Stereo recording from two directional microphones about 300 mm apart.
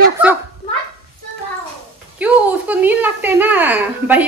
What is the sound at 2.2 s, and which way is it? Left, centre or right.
Speech, centre.